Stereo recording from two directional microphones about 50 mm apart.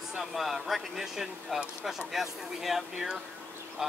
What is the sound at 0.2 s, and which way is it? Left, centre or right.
Speech, centre.